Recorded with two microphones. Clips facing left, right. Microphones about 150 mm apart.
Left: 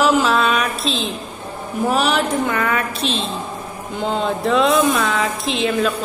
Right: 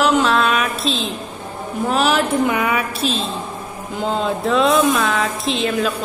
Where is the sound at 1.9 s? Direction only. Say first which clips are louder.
Right 1 dB; centre (ahead or behind).